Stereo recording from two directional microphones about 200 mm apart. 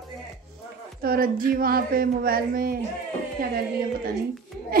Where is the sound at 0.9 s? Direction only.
45° right (ahead or behind).